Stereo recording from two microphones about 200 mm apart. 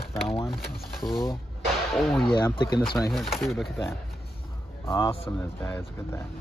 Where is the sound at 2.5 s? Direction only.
25° left (ahead or behind).